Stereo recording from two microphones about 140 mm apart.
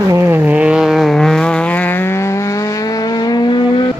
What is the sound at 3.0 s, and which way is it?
Vehicle, 30° left (ahead or behind).